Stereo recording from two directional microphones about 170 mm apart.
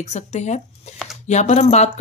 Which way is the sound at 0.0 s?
40° left (ahead or behind).